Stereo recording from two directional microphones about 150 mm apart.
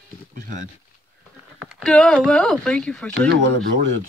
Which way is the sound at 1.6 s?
Centre (ahead or behind).